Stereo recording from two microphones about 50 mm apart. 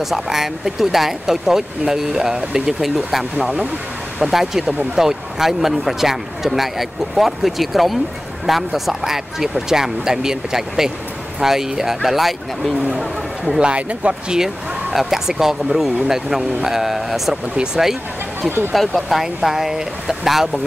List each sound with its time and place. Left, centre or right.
0.1 s speech: centre
3.3 s speech: right
4.2 s speech: centre
13.6 s speech: right
14.4 s speech: centre
18.7 s speech: centre